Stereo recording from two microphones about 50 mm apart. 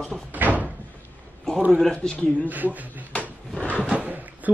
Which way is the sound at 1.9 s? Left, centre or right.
Centre.